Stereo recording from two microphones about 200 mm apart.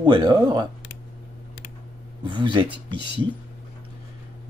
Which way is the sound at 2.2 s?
25° right (ahead or behind).